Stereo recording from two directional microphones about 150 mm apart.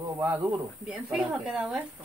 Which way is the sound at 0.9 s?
5° right (ahead or behind).